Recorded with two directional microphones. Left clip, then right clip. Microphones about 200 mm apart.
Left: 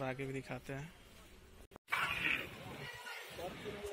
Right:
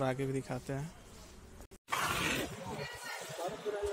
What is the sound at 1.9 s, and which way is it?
Shatter, 25° right (ahead or behind).